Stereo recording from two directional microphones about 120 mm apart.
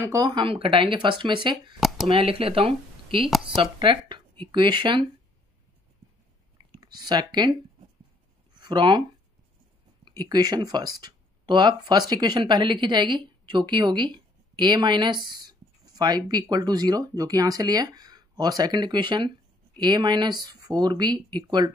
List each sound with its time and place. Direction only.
0.0 s speech: 30° right (ahead or behind)
1.8 s a sound: centre (ahead or behind)
2.0 s speech: 50° right (ahead or behind)
6.8 s speech: 35° right (ahead or behind)
8.5 s speech: 40° right (ahead or behind)
10.0 s speech: 35° right (ahead or behind)